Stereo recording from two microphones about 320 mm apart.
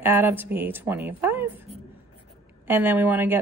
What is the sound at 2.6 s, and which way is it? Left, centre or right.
Speech, centre.